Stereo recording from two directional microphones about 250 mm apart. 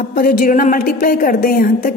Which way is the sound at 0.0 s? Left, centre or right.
Left.